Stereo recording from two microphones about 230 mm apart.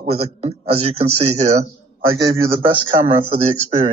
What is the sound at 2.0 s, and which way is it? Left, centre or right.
Speech, right.